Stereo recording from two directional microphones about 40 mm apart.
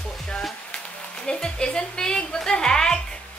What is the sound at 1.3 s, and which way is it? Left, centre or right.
A woman's voice, centre.